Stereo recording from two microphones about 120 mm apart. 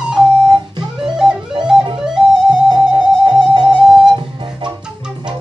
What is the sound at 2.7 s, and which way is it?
Music, 40° right (ahead or behind).